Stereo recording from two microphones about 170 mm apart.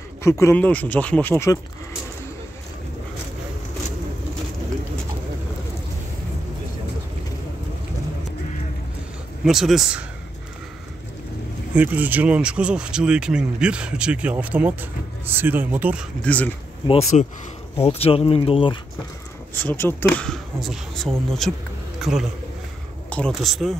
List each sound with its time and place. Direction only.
0.2 s speech: 15° left (ahead or behind)
9.4 s speech: centre (ahead or behind)
11.7 s speech: 10° right (ahead or behind)
16.3 s speech: 10° left (ahead or behind)
16.8 s speech: 40° left (ahead or behind)
19.5 s speech: 10° left (ahead or behind)